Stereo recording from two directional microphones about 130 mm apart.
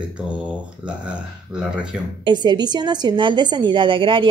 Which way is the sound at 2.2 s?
35° right (ahead or behind).